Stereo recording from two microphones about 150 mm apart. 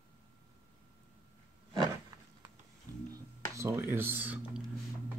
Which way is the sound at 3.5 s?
20° right (ahead or behind).